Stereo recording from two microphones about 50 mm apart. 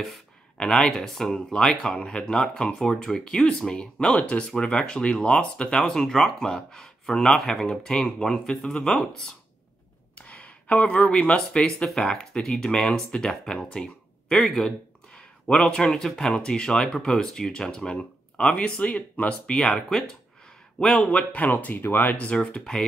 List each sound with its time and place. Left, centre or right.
0.6 s speech: centre
10.1 s a sound: left
11.5 s speech: centre
19.9 s speech: centre
21.0 s speech: left
22.2 s speech: left